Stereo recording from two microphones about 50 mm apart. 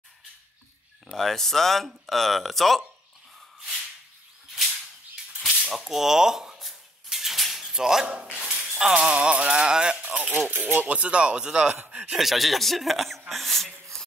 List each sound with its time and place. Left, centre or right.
1.1 s speech: centre
5.7 s speech: centre
6.7 s dishes: centre
8.7 s speech: centre
11.9 s a sound: right
12.2 s speech: centre